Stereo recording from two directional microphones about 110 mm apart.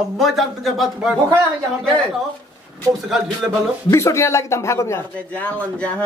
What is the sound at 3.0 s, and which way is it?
Speech, 5° right (ahead or behind).